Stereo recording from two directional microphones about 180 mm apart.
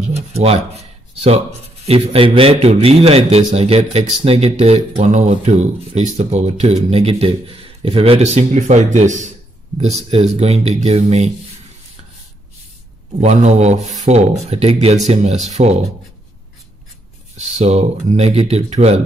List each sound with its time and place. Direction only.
0.1 s a sound: 35° right (ahead or behind)
1.9 s a man's voice: 30° right (ahead or behind)
10.3 s a man's voice: 35° right (ahead or behind)
13.2 s a man's voice: 40° right (ahead or behind)
17.4 s a man's voice: 40° right (ahead or behind)